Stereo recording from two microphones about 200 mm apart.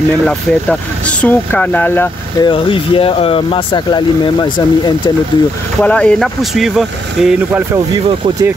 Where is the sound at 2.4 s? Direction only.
25° left (ahead or behind).